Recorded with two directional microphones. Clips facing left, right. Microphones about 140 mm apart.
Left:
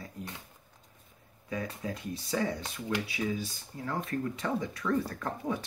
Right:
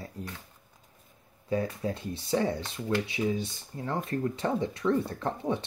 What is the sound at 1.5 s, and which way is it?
Speech, 30° right (ahead or behind).